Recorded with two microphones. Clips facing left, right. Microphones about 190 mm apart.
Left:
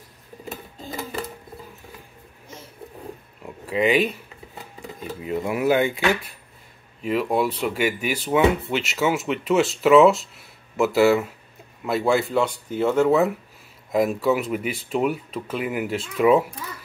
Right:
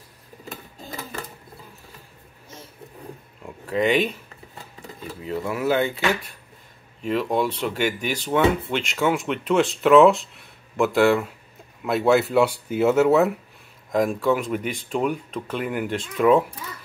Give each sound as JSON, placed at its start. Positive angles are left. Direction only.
{"t": 3.4, "sound": "speech", "side_deg": 5}
{"t": 5.2, "sound": "speech", "side_deg": 15}
{"t": 7.0, "sound": "speech", "side_deg": 10}